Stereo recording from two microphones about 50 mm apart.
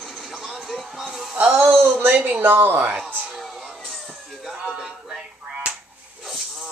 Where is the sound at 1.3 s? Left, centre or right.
Right.